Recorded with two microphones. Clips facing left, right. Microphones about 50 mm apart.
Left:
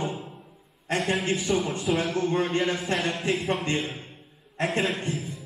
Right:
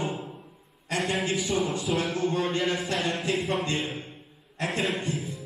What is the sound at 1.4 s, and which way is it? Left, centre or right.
Speech, centre.